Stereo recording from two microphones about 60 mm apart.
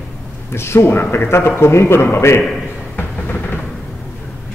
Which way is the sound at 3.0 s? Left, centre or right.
Left.